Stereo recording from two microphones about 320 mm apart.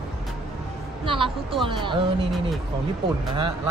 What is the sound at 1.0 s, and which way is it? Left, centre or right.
Speech, centre.